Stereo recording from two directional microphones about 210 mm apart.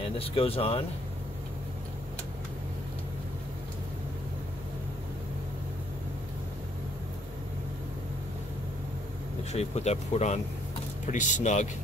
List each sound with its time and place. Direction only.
0.2 s speech: 25° left (ahead or behind)
9.4 s speech: 30° left (ahead or behind)